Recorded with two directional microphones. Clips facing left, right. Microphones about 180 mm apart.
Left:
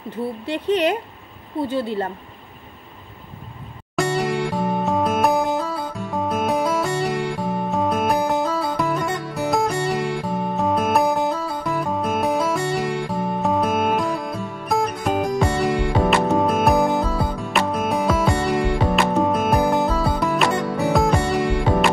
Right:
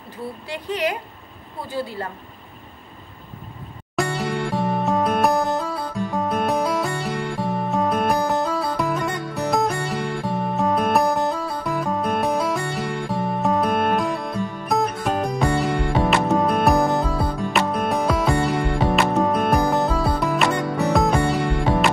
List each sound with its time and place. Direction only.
0.5 s speech: 25° left (ahead or behind)
3.9 s music: centre (ahead or behind)